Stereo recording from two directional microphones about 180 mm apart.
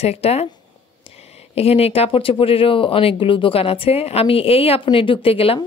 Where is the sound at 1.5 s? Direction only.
35° left (ahead or behind).